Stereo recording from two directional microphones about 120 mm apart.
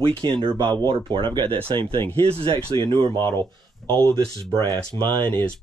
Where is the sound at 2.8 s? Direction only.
40° right (ahead or behind).